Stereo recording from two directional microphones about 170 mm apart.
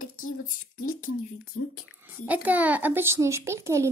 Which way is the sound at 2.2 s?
10° right (ahead or behind).